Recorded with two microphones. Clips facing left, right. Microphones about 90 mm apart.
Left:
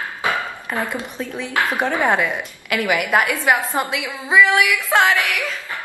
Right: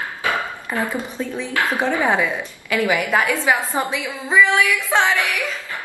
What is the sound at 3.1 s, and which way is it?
Speech, 15° left (ahead or behind).